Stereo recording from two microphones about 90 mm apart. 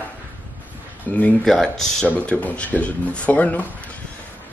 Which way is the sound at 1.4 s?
5° left (ahead or behind).